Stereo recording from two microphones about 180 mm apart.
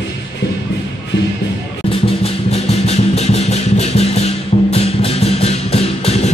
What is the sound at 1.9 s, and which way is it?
Music, 35° left (ahead or behind).